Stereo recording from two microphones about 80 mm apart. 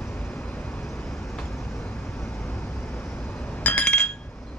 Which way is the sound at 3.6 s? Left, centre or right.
Left.